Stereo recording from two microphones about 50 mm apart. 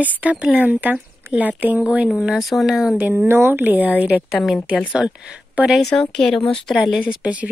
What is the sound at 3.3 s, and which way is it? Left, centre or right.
Speech, right.